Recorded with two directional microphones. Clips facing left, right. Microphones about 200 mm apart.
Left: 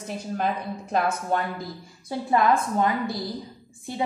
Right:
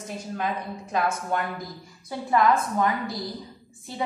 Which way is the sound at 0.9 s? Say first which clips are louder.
Left 2 dB; 35° left (ahead or behind).